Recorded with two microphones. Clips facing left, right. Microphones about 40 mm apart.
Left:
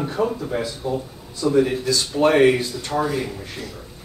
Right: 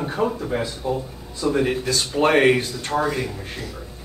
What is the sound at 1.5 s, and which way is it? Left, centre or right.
Speech, right.